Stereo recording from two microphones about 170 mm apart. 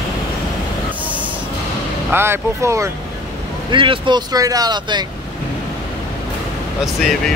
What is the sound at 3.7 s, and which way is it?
Speech, 30° right (ahead or behind).